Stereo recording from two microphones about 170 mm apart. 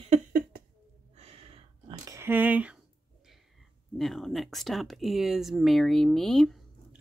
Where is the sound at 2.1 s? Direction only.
15° right (ahead or behind).